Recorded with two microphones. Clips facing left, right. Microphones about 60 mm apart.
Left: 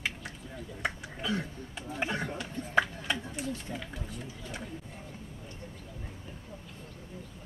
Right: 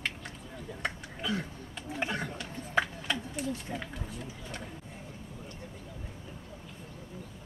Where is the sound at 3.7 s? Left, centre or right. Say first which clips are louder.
Right 1 dB; right.